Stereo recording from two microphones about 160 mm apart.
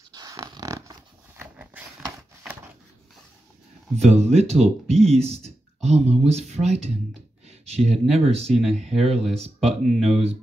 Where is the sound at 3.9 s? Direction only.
40° right (ahead or behind).